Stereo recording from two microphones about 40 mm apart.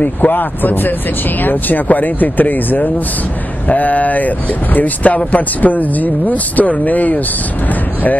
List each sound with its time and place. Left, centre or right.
0.0 s speech: left